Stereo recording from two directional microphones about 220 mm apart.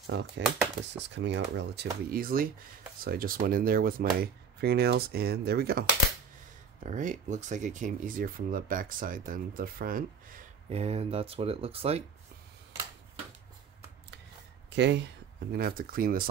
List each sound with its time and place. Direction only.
0.0 s speech: 50° right (ahead or behind)
6.8 s speech: 35° right (ahead or behind)
14.8 s speech: 50° right (ahead or behind)